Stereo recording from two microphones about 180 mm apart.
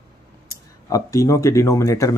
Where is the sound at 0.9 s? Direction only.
20° left (ahead or behind).